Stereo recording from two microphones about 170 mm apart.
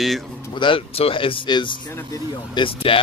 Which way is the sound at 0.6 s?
30° left (ahead or behind).